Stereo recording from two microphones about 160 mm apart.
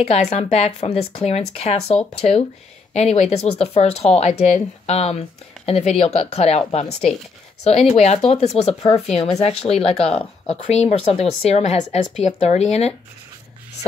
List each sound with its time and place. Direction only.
0.0 s speech: 45° left (ahead or behind)